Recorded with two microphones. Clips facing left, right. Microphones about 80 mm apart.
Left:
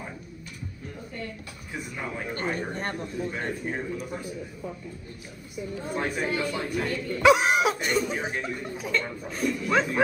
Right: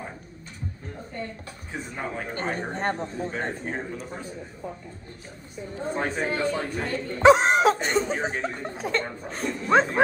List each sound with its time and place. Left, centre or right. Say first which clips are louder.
1.7 s speech: right 2 dB; right
5.6 s speech: right 1 dB; right